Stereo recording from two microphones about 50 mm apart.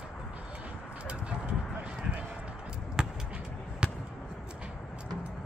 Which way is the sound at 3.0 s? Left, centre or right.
Centre.